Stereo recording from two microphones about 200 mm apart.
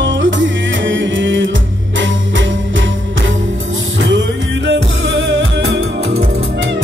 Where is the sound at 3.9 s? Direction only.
65° right (ahead or behind).